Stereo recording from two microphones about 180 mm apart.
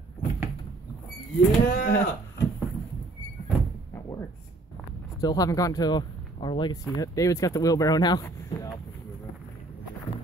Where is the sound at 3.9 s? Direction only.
15° left (ahead or behind).